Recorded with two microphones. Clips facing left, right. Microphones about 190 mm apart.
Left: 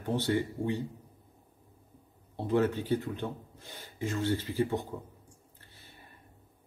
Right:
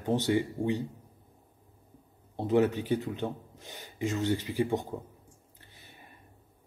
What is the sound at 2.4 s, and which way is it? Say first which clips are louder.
Speech: right 2 dB; 15° right (ahead or behind).